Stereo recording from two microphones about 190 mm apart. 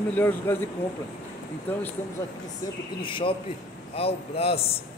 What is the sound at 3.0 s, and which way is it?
A man's voice, 25° left (ahead or behind).